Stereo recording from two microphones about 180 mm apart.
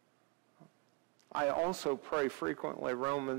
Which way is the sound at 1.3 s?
15° right (ahead or behind).